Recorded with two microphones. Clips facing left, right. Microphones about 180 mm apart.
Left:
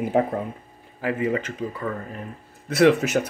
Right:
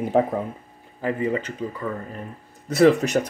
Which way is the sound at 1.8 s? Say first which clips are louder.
Even; 5° right (ahead or behind).